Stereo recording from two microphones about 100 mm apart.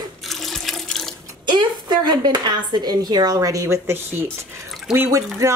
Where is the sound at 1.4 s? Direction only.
50° right (ahead or behind); by 5.5 s 30° right (ahead or behind).